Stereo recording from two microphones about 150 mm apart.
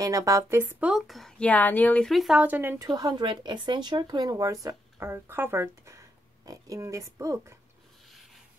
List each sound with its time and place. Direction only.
0.0 s a woman's voice: 20° right (ahead or behind)
2.9 s speech: 25° right (ahead or behind)